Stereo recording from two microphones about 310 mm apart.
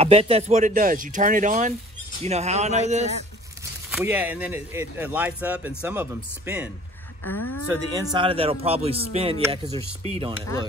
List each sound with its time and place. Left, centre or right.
0.0 s a man's voice: centre
3.9 s speech: centre
7.3 s speech: left
7.9 s a man's voice: centre